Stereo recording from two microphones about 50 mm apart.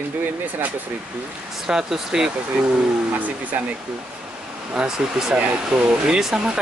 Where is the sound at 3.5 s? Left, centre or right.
Right.